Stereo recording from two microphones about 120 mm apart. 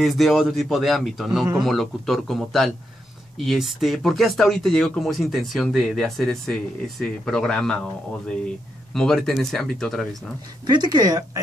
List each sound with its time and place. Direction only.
0.0 s speech: centre (ahead or behind)
8.9 s speech: 5° left (ahead or behind)
10.7 s speech: 35° right (ahead or behind)